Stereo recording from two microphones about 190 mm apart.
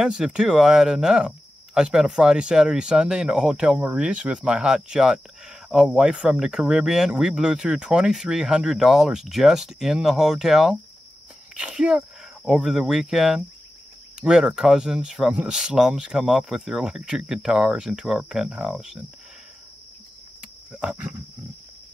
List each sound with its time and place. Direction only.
0.0 s speech: 5° right (ahead or behind)
20.8 s wild animals: 5° right (ahead or behind)